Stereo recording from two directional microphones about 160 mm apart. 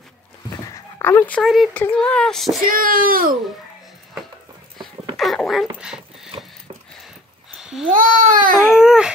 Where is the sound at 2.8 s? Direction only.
60° right (ahead or behind).